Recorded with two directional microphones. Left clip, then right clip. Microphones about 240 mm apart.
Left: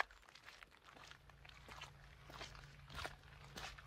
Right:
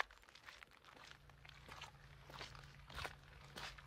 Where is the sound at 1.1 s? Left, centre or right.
Centre.